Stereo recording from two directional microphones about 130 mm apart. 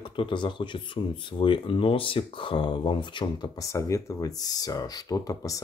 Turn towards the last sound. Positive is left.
turn(degrees=25)  # may be behind; listen again after turning